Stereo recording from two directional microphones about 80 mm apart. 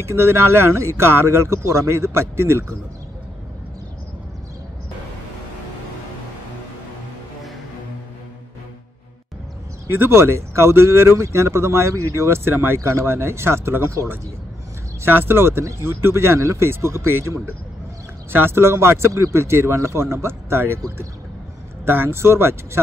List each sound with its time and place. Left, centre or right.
0.0 s speech: right
9.8 s speech: right
21.8 s speech: right